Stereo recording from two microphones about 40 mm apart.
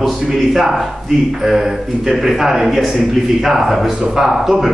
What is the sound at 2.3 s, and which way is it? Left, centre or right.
Speech, centre.